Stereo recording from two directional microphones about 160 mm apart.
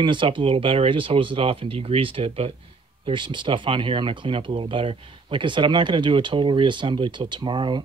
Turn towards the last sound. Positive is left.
turn(degrees=-30)  # may be behind; listen again after turning